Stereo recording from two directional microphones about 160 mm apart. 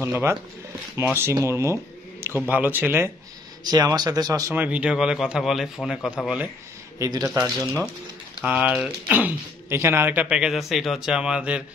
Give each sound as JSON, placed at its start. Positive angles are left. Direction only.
{"t": 0.0, "sound": "speech", "side_deg": -15}
{"t": 3.6, "sound": "speech", "side_deg": -25}
{"t": 7.0, "sound": "a man's voice", "side_deg": -20}
{"t": 7.4, "sound": "speech", "side_deg": 0}